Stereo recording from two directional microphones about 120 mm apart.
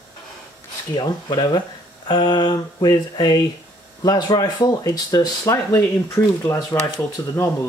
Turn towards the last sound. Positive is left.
turn(degrees=20)  # may be behind; listen again after turning